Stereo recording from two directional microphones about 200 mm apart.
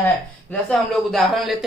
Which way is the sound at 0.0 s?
5° left (ahead or behind).